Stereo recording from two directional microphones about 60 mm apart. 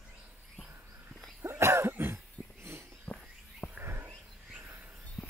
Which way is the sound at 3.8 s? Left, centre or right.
Right.